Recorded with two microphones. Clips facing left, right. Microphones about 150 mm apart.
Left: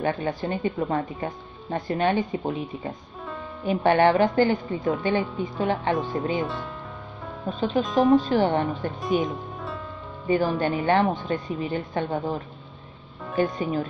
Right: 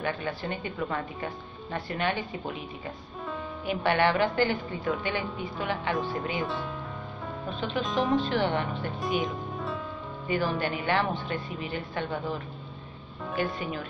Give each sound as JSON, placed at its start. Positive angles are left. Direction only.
{"t": 0.0, "sound": "speech", "side_deg": 40}
{"t": 6.4, "sound": "speech", "side_deg": 0}
{"t": 7.4, "sound": "speech", "side_deg": 40}
{"t": 7.8, "sound": "speech", "side_deg": 0}
{"t": 8.2, "sound": "speech", "side_deg": 40}
{"t": 9.0, "sound": "speech", "side_deg": 0}
{"t": 10.2, "sound": "speech", "side_deg": 40}
{"t": 13.4, "sound": "speech", "side_deg": 40}